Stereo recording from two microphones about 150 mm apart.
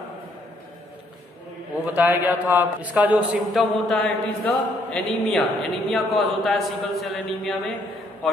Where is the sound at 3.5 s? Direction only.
Centre (ahead or behind).